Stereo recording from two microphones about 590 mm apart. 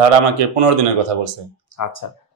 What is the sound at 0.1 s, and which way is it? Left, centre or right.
Speech, right.